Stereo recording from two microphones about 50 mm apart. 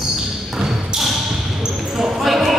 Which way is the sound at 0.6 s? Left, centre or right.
Centre.